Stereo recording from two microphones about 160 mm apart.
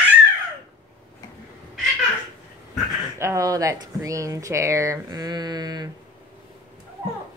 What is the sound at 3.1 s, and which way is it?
Speech, 20° right (ahead or behind).